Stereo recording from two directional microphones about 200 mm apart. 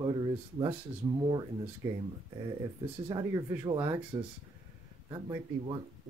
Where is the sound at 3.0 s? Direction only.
20° right (ahead or behind).